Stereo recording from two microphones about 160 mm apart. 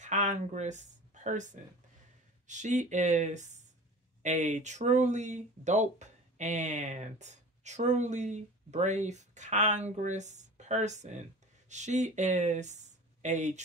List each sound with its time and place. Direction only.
0.0 s speech: 50° right (ahead or behind)